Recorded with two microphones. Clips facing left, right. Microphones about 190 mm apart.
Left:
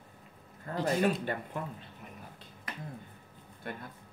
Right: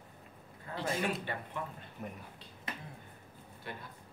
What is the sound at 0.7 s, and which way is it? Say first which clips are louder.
Speech: left 6 dB; 40° left (ahead or behind).